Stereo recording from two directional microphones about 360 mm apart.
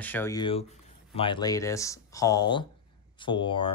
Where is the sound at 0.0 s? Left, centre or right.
Centre.